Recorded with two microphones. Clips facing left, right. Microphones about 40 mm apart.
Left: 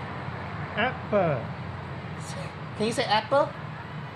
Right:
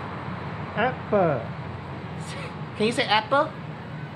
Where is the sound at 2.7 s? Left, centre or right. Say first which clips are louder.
Right 3 dB; right.